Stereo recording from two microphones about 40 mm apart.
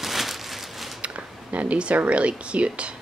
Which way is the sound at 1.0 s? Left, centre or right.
Right.